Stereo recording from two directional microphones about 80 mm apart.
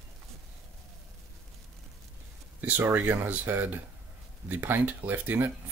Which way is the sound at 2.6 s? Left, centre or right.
Right.